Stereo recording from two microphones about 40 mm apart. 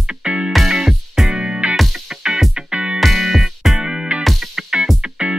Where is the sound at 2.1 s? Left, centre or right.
Centre.